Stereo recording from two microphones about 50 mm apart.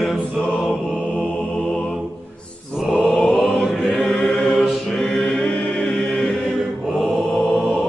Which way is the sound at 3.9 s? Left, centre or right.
Centre.